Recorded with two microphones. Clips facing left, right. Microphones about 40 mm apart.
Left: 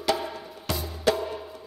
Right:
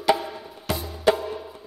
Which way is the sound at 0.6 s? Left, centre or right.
Centre.